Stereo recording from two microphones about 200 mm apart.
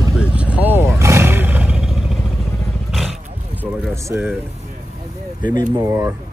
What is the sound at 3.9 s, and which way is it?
Speech, 10° right (ahead or behind).